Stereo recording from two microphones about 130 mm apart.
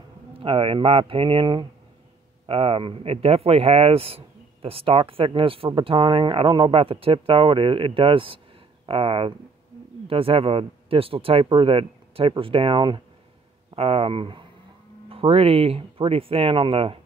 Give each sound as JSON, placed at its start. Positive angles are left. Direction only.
{"t": 0.3, "sound": "speech", "side_deg": -45}